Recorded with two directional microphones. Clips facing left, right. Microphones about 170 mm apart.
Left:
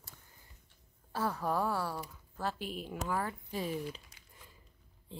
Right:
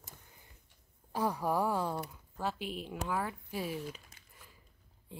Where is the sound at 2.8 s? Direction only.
Centre (ahead or behind).